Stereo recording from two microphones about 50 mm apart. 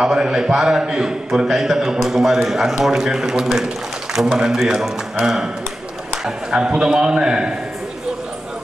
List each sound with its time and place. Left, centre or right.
0.0 s a man's voice: centre